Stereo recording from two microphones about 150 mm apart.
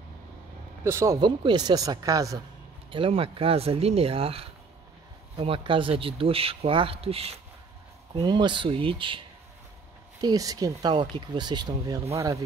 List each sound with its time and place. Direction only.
0.8 s speech: 20° right (ahead or behind)
1.2 s speech: 30° right (ahead or behind)
2.9 s speech: 35° right (ahead or behind)
8.1 s speech: 30° right (ahead or behind)
10.2 s speech: 25° right (ahead or behind)